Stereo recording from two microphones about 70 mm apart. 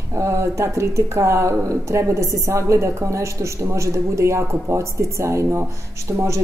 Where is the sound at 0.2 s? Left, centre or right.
Right.